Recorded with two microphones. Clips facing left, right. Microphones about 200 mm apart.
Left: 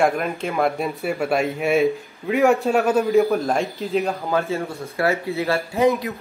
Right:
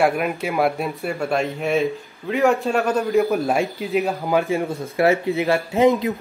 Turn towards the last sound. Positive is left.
turn(degrees=-20)  # may be behind; listen again after turning